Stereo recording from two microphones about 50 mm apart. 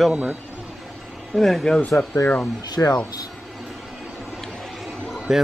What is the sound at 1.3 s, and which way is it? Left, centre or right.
Speech, centre.